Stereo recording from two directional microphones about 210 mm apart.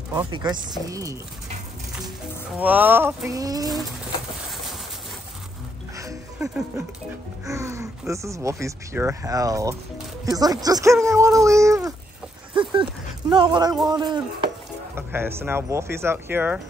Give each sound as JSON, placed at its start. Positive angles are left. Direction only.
{"t": 0.1, "sound": "speech", "side_deg": -20}
{"t": 2.6, "sound": "speech", "side_deg": -10}
{"t": 5.9, "sound": "music", "side_deg": -15}
{"t": 8.1, "sound": "speech", "side_deg": -15}
{"t": 13.3, "sound": "speech", "side_deg": -20}